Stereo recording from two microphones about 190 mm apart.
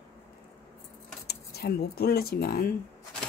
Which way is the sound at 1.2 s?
60° left (ahead or behind).